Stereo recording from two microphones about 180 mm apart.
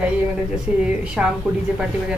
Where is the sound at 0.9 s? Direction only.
5° right (ahead or behind).